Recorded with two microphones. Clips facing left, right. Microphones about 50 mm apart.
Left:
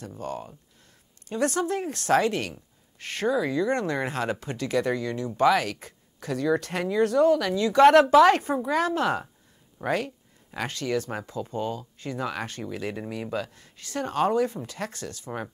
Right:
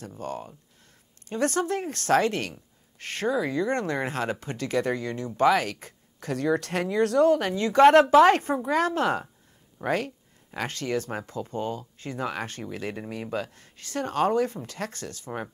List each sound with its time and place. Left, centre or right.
0.2 s speech: right
7.3 s speech: right